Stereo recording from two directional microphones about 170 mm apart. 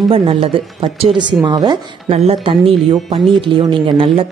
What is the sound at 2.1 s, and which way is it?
Speech, 35° right (ahead or behind).